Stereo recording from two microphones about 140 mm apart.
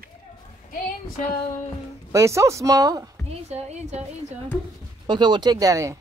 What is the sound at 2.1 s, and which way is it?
Speech, 20° right (ahead or behind).